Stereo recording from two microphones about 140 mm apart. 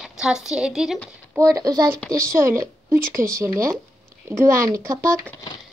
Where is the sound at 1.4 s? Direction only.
25° right (ahead or behind).